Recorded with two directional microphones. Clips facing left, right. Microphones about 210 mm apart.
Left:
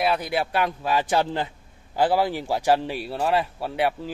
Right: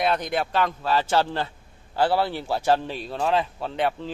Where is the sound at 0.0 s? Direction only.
5° left (ahead or behind).